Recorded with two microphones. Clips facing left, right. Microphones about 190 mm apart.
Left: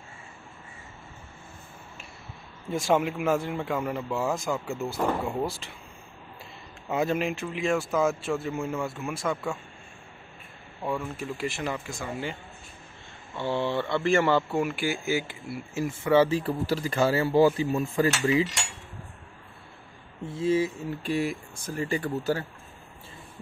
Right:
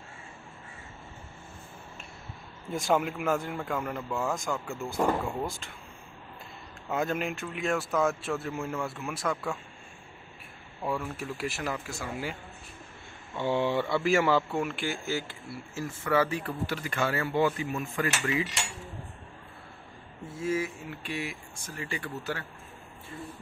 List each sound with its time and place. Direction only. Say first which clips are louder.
2.7 s a man's voice: left 3 dB; centre (ahead or behind)
6.9 s a man's voice: left 4 dB; 5° left (ahead or behind)
10.8 s a man's voice: left 1 dB; 5° right (ahead or behind)
13.4 s speech: even; 15° right (ahead or behind); by 18.5 s 30° left (ahead or behind)
20.3 s speech: left 6 dB; 30° left (ahead or behind)